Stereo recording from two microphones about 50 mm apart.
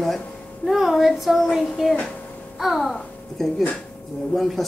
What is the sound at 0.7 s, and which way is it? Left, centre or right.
Child singing, centre.